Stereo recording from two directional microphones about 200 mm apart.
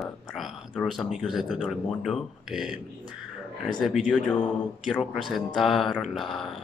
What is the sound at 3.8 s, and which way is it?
Speech, centre (ahead or behind).